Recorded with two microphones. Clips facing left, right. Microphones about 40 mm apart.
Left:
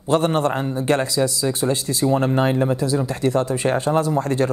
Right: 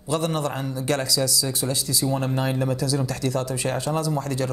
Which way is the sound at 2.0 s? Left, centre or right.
Left.